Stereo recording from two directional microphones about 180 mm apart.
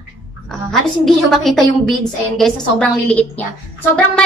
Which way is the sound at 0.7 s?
Centre (ahead or behind).